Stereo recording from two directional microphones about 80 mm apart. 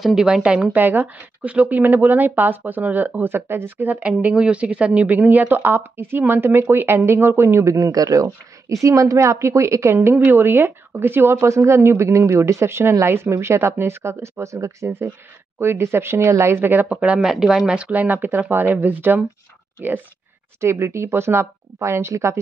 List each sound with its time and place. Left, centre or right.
0.0 s a woman's voice: centre; by 19.2 s right
20.6 s a woman's voice: right